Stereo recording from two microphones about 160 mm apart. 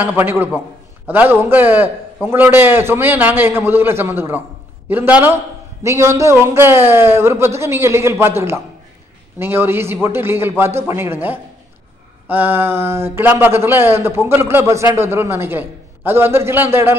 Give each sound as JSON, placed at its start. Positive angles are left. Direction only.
{"t": 0.0, "sound": "a man's voice", "side_deg": -10}